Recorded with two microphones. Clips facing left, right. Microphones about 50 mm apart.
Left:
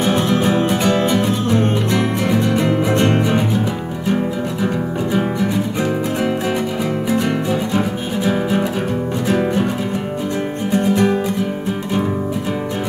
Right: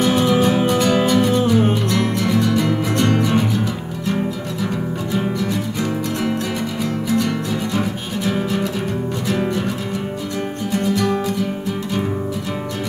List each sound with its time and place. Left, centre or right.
1.0 s music: left
7.1 s music: left
10.7 s music: left